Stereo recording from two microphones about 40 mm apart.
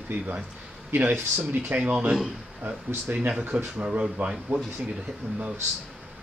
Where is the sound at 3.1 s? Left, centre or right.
Right.